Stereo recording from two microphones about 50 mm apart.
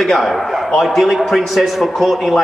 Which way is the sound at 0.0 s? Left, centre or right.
Centre.